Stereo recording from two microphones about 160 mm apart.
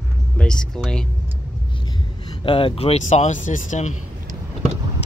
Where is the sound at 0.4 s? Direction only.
5° left (ahead or behind).